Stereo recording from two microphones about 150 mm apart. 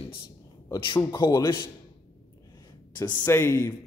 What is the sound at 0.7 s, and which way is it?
Speech, 30° left (ahead or behind).